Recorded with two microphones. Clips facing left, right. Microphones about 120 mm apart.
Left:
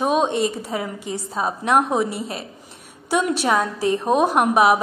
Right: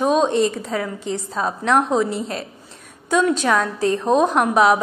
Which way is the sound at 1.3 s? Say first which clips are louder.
Even; 15° left (ahead or behind).